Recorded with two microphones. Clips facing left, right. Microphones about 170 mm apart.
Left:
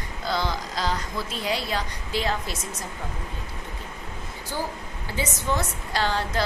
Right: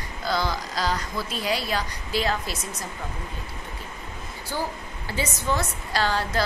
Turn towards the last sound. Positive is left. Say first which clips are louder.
# right 1 dB
turn(degrees=20)  # may be behind; listen again after turning